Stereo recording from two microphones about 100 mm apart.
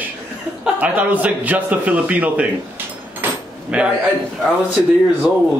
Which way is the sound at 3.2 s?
10° right (ahead or behind).